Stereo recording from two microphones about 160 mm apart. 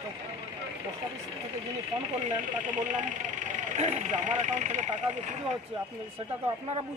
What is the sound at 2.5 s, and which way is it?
Speech, 50° right (ahead or behind).